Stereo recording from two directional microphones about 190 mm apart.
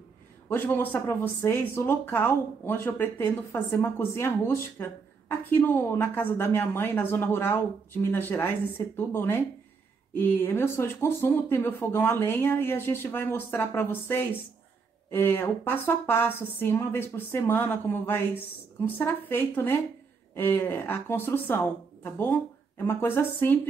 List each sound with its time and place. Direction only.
0.5 s speech: 10° left (ahead or behind)